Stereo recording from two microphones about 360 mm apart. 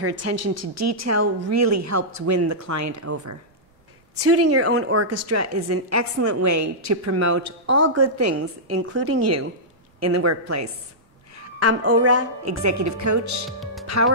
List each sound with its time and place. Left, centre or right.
0.0 s a woman's voice: right
4.2 s a woman's voice: right
11.8 s a woman's voice: right
13.5 s speech: centre